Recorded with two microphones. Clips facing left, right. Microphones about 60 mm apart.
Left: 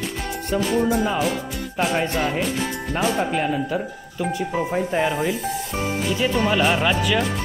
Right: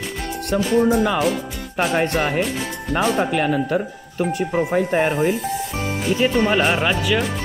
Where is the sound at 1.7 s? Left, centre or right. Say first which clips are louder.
Right 3 dB; right.